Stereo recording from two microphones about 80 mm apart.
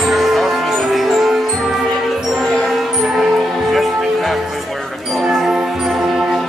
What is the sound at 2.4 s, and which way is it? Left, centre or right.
Music, centre.